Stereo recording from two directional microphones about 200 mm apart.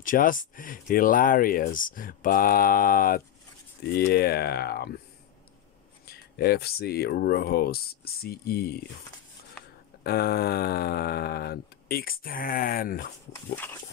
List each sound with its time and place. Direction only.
0.0 s speech: 45° left (ahead or behind)
6.0 s speech: 50° left (ahead or behind)
10.0 s speech: 50° left (ahead or behind)
13.3 s horse: 10° left (ahead or behind)